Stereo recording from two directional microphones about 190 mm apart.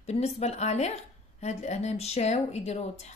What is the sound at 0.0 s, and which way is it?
Speech, 35° left (ahead or behind).